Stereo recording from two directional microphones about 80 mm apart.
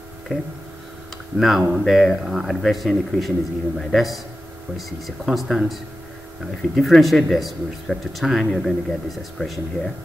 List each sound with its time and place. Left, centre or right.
0.3 s speech: centre
1.7 s speech: centre